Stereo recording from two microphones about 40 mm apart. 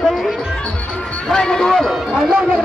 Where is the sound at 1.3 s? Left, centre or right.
Centre.